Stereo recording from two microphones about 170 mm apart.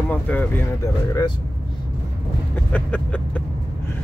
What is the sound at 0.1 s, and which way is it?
Speech, 10° left (ahead or behind).